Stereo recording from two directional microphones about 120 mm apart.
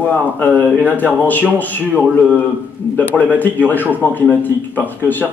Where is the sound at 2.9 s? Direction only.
15° left (ahead or behind).